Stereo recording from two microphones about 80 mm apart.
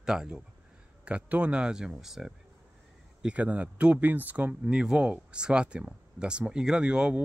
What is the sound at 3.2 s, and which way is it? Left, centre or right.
Speech, centre.